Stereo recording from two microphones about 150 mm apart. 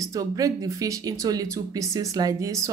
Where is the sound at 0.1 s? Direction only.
20° right (ahead or behind).